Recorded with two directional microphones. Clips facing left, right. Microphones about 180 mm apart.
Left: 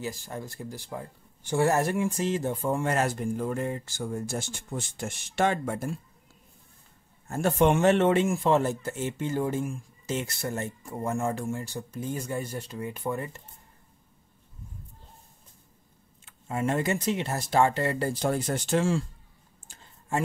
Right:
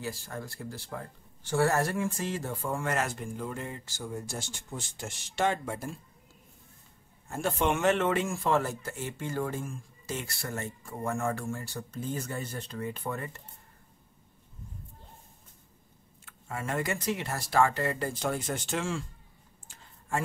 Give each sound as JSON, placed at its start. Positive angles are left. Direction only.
{"t": 0.0, "sound": "a man's voice", "side_deg": 20}
{"t": 7.2, "sound": "a man's voice", "side_deg": 45}
{"t": 16.3, "sound": "a man's voice", "side_deg": 20}